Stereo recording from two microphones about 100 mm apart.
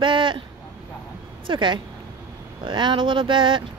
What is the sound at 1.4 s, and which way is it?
Speech, 55° right (ahead or behind).